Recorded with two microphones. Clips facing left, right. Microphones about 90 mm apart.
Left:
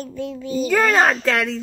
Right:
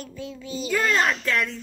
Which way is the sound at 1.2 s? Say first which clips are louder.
Left 5 dB; 90° left.